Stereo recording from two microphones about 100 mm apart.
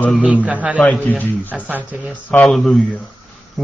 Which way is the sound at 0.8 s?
15° left (ahead or behind).